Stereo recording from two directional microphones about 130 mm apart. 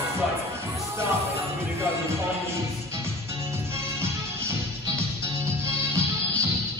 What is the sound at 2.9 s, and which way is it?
Music, 20° right (ahead or behind).